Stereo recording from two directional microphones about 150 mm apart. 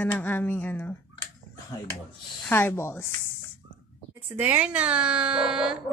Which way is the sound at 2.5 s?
15° left (ahead or behind).